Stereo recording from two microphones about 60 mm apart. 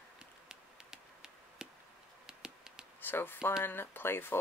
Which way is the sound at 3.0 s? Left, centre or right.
Left.